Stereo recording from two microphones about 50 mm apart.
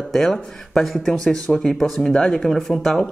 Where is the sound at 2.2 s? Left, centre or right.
Centre.